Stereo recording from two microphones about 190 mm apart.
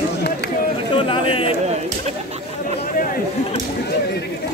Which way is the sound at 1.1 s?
30° left (ahead or behind).